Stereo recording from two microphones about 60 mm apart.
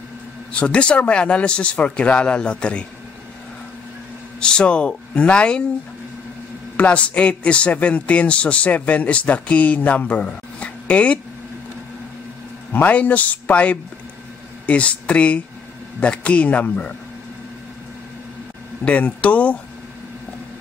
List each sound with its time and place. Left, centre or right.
0.5 s a man's voice: centre
4.4 s speech: centre
6.8 s a man's voice: left
12.7 s a man's voice: left
18.9 s a man's voice: left